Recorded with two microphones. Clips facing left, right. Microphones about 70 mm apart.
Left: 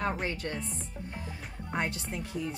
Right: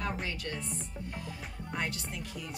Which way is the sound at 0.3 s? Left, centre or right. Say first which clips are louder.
Left 3 dB; left.